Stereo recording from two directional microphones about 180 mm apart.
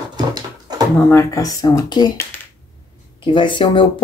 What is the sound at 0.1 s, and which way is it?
Dog, 20° right (ahead or behind).